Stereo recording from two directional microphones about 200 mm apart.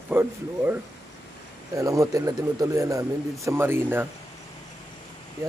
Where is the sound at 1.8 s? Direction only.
15° right (ahead or behind).